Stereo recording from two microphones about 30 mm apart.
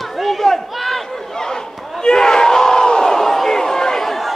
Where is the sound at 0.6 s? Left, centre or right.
Centre.